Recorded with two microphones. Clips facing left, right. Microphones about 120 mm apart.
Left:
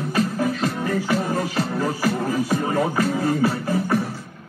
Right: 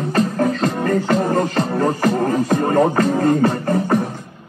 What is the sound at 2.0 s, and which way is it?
Music, 50° right (ahead or behind).